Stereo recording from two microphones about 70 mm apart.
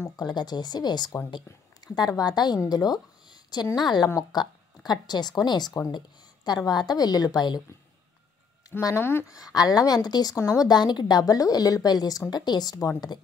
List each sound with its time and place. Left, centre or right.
0.2 s speech: left
2.0 s a woman's voice: left
3.7 s a woman's voice: left
8.9 s speech: left
9.3 s a woman's voice: left
10.7 s a woman's voice: left
12.3 s speech: left